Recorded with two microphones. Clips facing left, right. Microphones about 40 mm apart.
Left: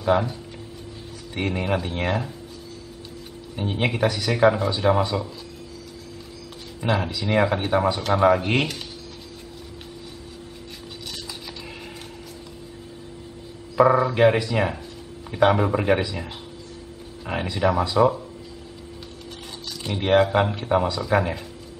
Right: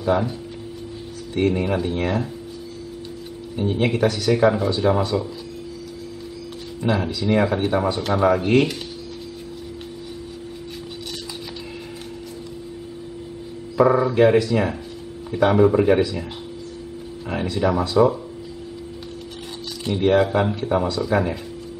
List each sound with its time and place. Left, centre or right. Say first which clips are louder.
0.0 s speech: even; centre
1.3 s speech: right 4 dB; centre
3.5 s speech: right 4 dB; centre
6.8 s speech: right 2 dB; centre
13.7 s speech: right 1 dB; centre
17.3 s speech: right 1 dB; centre
19.9 s speech: right 1 dB; centre